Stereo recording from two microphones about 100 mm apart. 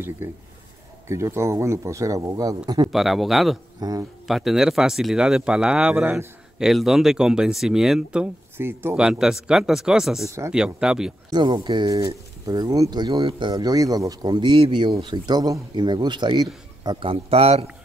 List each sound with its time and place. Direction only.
0.2 s a man's voice: 20° right (ahead or behind); by 2.9 s 45° right (ahead or behind)
2.9 s speech: centre (ahead or behind)
3.8 s a man's voice: 40° right (ahead or behind)
4.3 s speech: 5° right (ahead or behind)
8.5 s speech: 25° right (ahead or behind)
8.9 s speech: 5° right (ahead or behind)
11.2 s a man's voice: 45° right (ahead or behind)
15.2 s a man's voice: 40° right (ahead or behind); by 17.6 s 85° right